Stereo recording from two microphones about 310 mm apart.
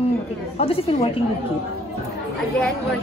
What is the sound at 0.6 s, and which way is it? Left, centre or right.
Speech, centre.